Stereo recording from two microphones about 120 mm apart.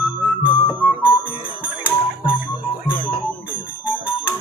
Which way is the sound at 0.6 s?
45° left (ahead or behind).